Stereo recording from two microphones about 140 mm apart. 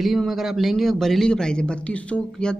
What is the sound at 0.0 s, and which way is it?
A man's voice, centre (ahead or behind).